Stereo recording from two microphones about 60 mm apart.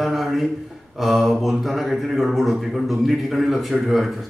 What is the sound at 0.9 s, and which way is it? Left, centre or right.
Speech, centre.